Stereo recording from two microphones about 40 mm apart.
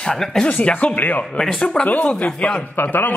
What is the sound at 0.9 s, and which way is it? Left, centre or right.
Speech, left.